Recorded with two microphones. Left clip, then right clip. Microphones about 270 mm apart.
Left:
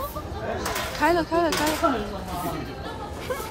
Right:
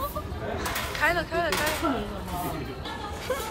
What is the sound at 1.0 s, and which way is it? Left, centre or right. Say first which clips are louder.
Speech: left 4 dB; centre.